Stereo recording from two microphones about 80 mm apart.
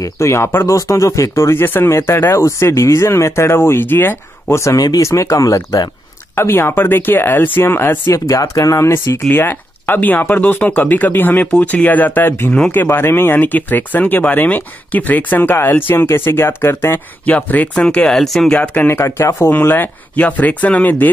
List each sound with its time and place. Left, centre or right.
0.0 s speech: left
0.7 s speech: left
4.7 s speech: left
6.3 s speech: left
8.1 s speech: left
9.3 s speech: left
17.3 s speech: centre
18.6 s speech: centre
18.9 s speech: left
19.5 s speech: left